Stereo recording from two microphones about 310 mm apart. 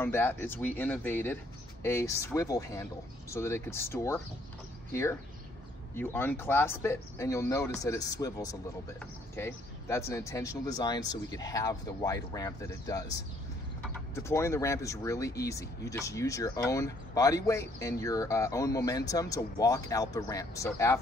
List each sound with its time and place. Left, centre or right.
0.0 s speech: centre
5.9 s speech: centre